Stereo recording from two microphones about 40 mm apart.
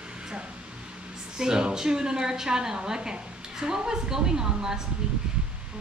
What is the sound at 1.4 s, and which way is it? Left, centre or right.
A woman's voice, centre.